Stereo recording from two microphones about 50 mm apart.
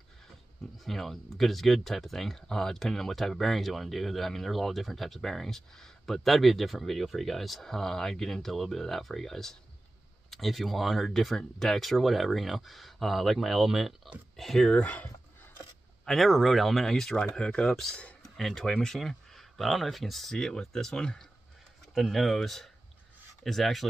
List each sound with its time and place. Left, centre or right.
0.8 s speech: centre
14.3 s speech: centre
14.7 s speech: left
16.1 s speech: centre
21.9 s speech: centre